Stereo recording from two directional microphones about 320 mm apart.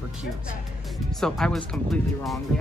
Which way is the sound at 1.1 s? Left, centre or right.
Centre.